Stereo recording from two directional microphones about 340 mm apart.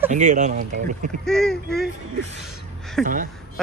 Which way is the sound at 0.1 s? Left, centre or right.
Right.